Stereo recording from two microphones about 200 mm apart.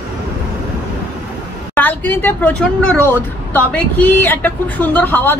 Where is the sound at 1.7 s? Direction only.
10° left (ahead or behind).